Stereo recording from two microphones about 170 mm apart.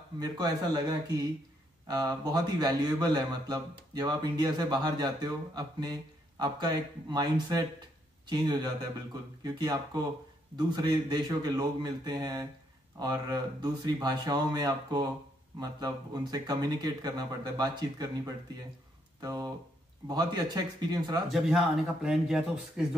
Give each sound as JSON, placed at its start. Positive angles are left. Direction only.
{"t": 0.2, "sound": "speech", "side_deg": -25}
{"t": 21.3, "sound": "speech", "side_deg": 0}